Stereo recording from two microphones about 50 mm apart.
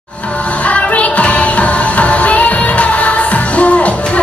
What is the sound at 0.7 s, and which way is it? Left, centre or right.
Music, left.